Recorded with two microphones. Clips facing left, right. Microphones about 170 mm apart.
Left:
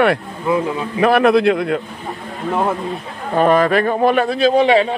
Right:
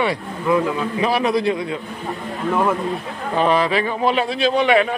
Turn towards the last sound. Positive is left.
turn(degrees=35)  # may be behind; listen again after turning